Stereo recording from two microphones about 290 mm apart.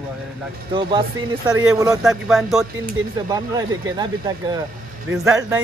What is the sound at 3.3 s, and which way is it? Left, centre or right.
Speech, centre.